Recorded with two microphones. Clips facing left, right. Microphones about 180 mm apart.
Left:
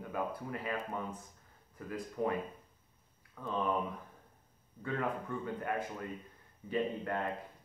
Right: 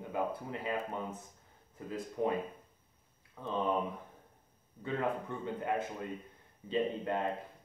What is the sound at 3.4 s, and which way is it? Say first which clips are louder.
Speech: right 1 dB; 20° right (ahead or behind).